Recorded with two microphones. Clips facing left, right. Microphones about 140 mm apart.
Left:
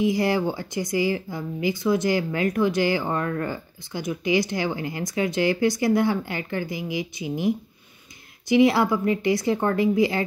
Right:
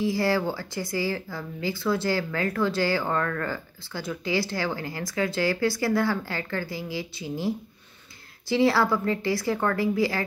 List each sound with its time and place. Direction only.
0.0 s speech: 20° left (ahead or behind)